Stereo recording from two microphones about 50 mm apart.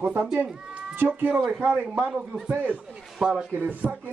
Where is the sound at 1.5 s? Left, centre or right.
Right.